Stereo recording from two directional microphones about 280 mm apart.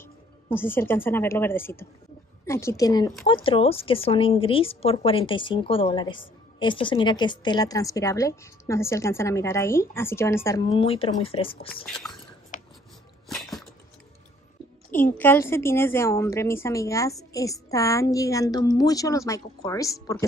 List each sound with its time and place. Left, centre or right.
0.0 s a woman's voice: centre
11.7 s speech: centre
13.3 s a sound: centre
14.9 s a woman's voice: centre